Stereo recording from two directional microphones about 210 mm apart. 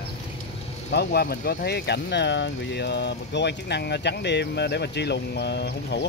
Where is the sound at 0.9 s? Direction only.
50° left (ahead or behind).